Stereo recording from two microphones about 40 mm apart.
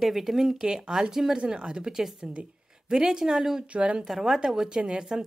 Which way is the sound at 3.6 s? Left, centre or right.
Right.